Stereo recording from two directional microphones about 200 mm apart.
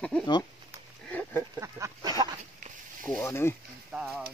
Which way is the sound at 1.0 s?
5° left (ahead or behind).